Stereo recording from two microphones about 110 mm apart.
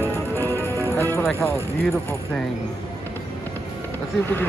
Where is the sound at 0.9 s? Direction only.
20° left (ahead or behind).